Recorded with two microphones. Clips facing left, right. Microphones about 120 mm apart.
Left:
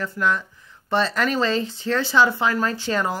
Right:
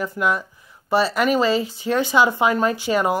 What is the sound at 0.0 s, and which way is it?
Speech, 10° right (ahead or behind).